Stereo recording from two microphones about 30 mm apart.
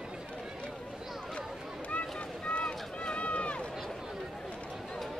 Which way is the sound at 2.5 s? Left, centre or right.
Left.